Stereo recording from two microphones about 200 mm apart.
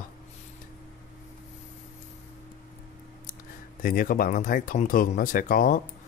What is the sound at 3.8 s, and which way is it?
Speech, 45° left (ahead or behind).